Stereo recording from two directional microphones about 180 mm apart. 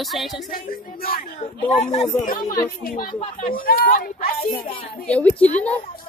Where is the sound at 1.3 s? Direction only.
40° left (ahead or behind).